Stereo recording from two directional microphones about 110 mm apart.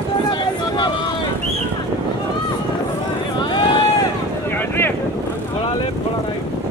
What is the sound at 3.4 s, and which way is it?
Vehicle, 45° left (ahead or behind).